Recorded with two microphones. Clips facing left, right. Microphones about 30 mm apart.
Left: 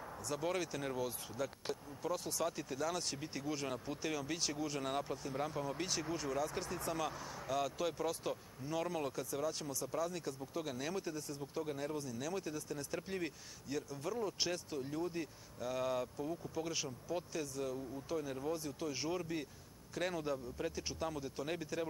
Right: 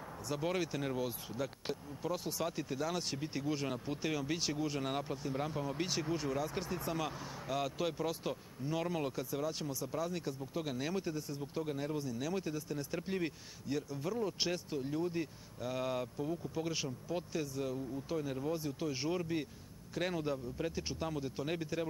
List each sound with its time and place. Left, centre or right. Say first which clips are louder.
0.3 s speech: right 2 dB; centre